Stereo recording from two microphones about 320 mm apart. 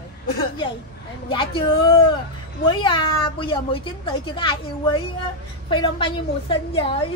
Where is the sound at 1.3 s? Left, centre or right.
Centre.